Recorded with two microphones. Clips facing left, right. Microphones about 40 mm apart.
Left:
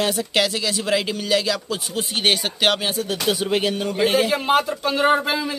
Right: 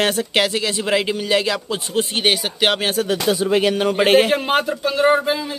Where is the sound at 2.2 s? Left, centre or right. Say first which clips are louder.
Left 1 dB; centre.